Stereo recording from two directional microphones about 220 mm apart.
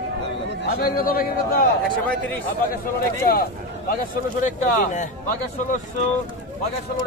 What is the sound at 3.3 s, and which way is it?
Speech, 40° left (ahead or behind).